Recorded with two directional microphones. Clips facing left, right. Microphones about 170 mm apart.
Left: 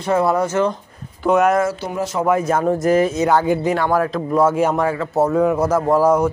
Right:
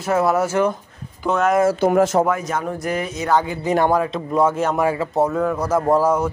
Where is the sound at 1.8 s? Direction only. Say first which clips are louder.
Right 7 dB; 50° right (ahead or behind).